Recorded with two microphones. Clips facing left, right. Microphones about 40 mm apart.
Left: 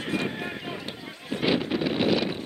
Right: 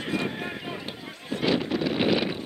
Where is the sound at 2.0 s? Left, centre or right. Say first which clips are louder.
Even; centre.